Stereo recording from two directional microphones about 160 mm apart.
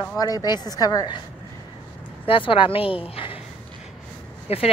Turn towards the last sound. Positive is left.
turn(degrees=40)  # may be behind; listen again after turning